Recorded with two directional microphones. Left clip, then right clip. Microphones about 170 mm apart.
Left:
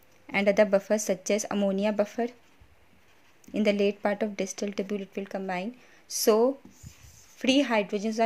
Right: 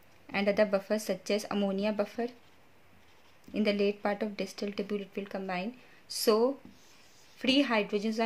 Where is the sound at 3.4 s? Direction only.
35° left (ahead or behind).